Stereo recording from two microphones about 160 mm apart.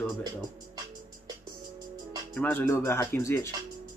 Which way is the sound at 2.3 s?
10° left (ahead or behind).